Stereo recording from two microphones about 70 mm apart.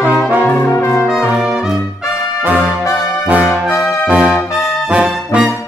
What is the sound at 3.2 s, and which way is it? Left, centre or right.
Brass instrument, centre.